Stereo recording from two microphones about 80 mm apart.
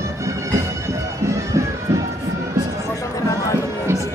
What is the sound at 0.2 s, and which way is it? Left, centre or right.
Music, right.